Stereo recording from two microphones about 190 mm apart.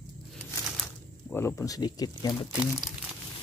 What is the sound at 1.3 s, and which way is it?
Speech, 15° left (ahead or behind).